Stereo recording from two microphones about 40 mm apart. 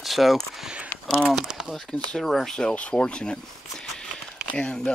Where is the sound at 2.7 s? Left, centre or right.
Left.